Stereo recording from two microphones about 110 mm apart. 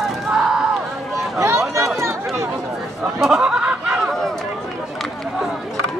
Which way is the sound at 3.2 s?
5° right (ahead or behind).